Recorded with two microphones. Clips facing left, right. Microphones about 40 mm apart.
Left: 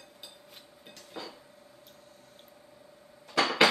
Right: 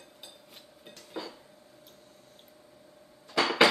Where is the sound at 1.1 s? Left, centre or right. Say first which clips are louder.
Right 3 dB; centre.